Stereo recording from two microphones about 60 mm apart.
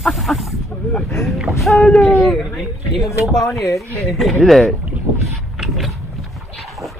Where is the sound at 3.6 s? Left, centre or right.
Left.